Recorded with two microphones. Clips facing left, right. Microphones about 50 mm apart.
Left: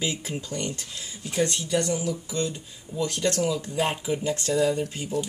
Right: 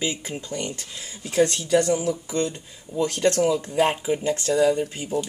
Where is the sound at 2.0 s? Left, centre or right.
Right.